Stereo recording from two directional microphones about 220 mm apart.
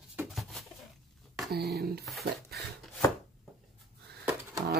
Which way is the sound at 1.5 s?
45° right (ahead or behind).